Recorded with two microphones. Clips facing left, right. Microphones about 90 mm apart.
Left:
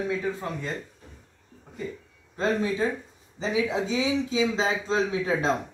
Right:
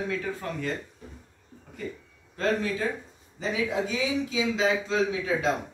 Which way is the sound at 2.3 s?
20° left (ahead or behind).